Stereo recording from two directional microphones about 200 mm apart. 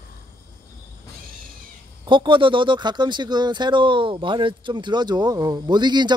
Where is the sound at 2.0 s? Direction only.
25° right (ahead or behind).